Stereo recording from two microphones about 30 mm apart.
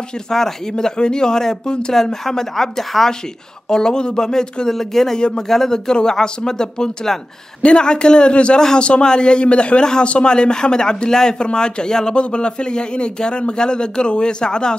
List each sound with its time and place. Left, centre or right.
0.3 s speech: centre